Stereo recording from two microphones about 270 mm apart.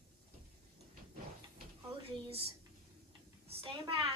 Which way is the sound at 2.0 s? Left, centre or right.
Right.